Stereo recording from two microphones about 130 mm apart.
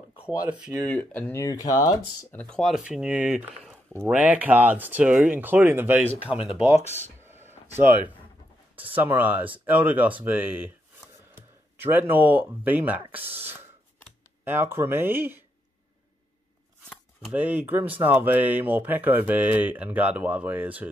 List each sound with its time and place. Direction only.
0.5 s speech: 10° right (ahead or behind)
0.8 s speech: 15° left (ahead or behind)
2.3 s speech: 10° left (ahead or behind); by 6.5 s 10° right (ahead or behind)
7.2 s a sound: 15° right (ahead or behind)
8.9 s speech: 15° right (ahead or behind)
13.2 s speech: 50° right (ahead or behind)
14.4 s speech: 15° right (ahead or behind)
17.3 s speech: 15° right (ahead or behind)